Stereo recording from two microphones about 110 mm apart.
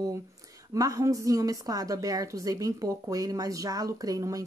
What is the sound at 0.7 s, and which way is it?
Speech, 30° right (ahead or behind).